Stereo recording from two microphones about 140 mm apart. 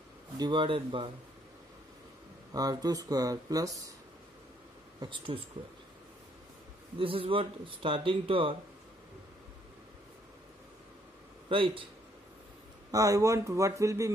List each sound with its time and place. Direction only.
0.4 s speech: 35° right (ahead or behind)
2.5 s speech: 25° right (ahead or behind)
5.0 s speech: 35° right (ahead or behind)
7.0 s speech: 40° right (ahead or behind)
11.4 s a man's voice: 40° right (ahead or behind)
12.9 s speech: 25° right (ahead or behind)